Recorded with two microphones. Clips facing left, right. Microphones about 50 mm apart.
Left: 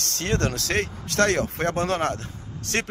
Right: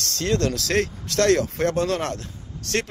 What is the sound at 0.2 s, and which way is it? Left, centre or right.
Speech, left.